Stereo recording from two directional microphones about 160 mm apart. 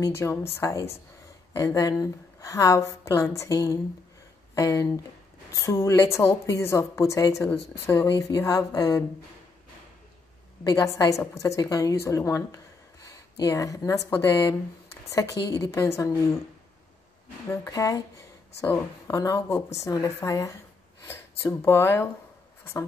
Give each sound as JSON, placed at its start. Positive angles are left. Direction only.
{"t": 0.0, "sound": "a woman's voice", "side_deg": 15}
{"t": 10.6, "sound": "a woman's voice", "side_deg": 20}
{"t": 17.5, "sound": "a woman's voice", "side_deg": 20}